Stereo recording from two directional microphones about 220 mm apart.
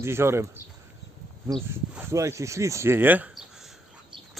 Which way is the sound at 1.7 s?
10° right (ahead or behind).